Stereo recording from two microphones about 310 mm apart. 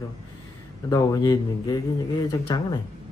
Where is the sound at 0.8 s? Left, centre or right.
Centre.